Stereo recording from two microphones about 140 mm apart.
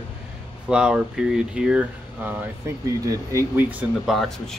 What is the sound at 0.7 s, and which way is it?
Speech, 5° right (ahead or behind).